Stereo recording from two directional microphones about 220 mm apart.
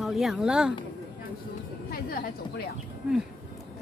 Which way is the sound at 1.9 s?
40° left (ahead or behind).